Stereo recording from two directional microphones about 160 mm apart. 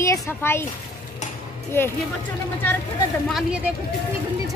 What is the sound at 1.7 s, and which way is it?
Speech, 15° left (ahead or behind).